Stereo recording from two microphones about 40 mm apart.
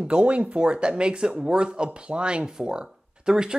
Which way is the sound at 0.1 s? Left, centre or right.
Right.